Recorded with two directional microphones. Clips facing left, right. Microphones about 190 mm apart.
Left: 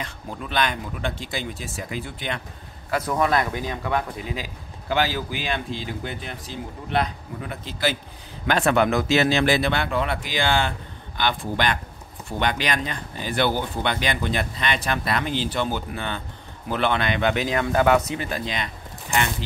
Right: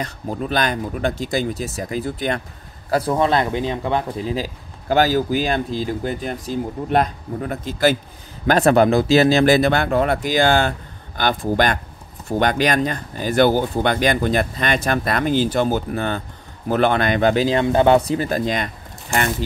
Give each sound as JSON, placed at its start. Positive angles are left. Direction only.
{"t": 0.0, "sound": "speech", "side_deg": -40}
{"t": 2.9, "sound": "speech", "side_deg": -30}